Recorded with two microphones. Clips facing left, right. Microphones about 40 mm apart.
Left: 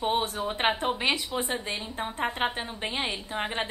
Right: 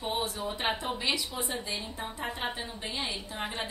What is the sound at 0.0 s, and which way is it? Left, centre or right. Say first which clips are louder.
A woman's voice: left 5 dB; left.